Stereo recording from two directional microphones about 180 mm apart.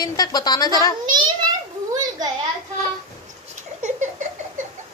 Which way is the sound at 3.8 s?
40° right (ahead or behind).